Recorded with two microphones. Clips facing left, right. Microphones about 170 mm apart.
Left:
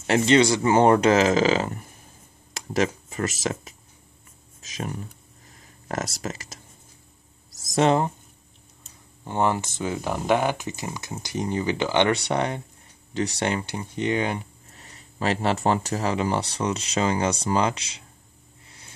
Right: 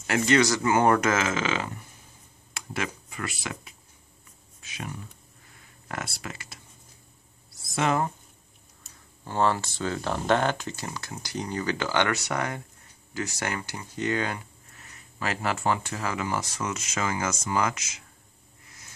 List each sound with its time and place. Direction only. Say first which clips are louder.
0.0 s speech: left 4 dB; 25° left (ahead or behind)
5.5 s a sound: left 6 dB; 40° left (ahead or behind)
7.6 s speech: left 5 dB; 35° left (ahead or behind)
9.2 s speech: left 1 dB; 20° left (ahead or behind)
14.8 s speech: left 5 dB; 30° left (ahead or behind)
18.7 s music: left 2 dB; 30° left (ahead or behind)